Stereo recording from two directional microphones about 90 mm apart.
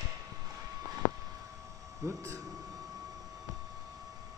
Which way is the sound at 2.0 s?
35° right (ahead or behind).